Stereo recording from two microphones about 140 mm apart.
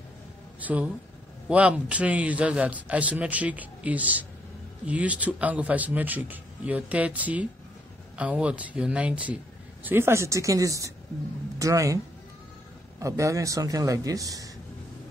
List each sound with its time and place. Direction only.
0.6 s a man's voice: 10° right (ahead or behind)
13.0 s speech: 20° right (ahead or behind)